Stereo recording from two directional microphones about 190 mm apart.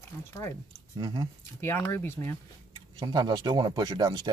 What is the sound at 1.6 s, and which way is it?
Speech, 10° left (ahead or behind).